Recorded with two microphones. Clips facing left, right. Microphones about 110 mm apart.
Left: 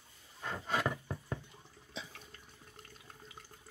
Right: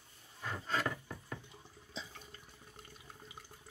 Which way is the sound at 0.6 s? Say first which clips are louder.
Left 2 dB; 15° left (ahead or behind).